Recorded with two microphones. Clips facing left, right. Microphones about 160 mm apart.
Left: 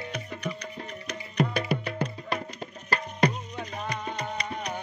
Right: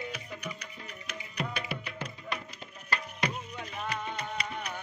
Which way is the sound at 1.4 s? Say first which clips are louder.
Left 10 dB; 40° left (ahead or behind).